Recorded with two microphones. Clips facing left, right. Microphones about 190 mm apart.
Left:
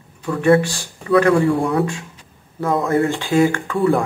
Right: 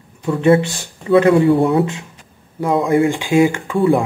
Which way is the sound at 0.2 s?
25° right (ahead or behind).